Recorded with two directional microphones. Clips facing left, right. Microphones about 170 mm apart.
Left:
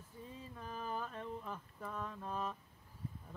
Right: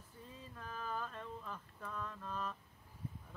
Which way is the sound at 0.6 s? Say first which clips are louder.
Left 1 dB; 15° left (ahead or behind).